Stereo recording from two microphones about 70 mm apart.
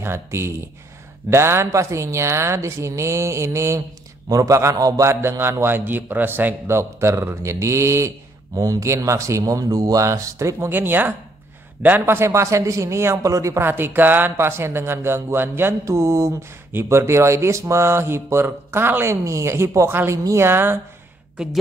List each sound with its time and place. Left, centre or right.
0.0 s a woman's voice: right
4.3 s a man's voice: right
6.8 s a woman's voice: right
10.7 s speech: right
12.3 s a woman's voice: right
13.6 s speech: right
19.2 s a woman's voice: right